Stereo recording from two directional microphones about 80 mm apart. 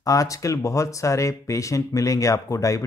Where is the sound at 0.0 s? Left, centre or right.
Left.